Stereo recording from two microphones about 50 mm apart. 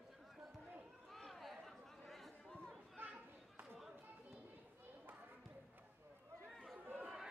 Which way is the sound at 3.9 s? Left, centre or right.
Right.